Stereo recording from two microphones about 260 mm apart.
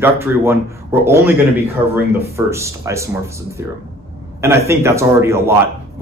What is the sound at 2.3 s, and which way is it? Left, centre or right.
A man's voice, centre.